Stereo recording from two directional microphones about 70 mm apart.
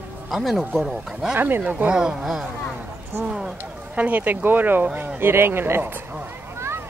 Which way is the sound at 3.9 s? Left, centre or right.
Right.